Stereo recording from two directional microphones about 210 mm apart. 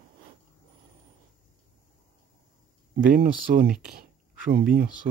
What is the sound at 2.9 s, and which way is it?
Speech, 45° right (ahead or behind).